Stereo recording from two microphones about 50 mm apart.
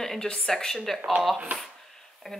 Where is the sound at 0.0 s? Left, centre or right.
Centre.